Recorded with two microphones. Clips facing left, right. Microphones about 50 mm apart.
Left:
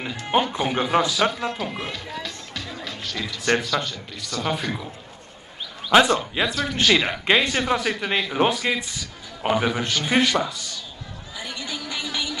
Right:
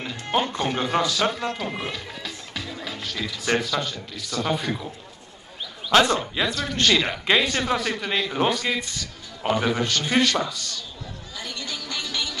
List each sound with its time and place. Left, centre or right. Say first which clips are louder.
0.3 s speech: left 2 dB; centre
5.9 s a man's voice: left 2 dB; centre
11.3 s a sound: left 2 dB; centre